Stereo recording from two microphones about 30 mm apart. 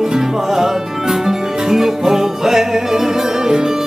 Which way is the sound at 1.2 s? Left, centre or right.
Centre.